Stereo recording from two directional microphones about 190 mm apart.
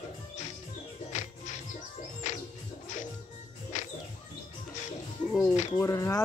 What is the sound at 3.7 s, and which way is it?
Music, 40° left (ahead or behind).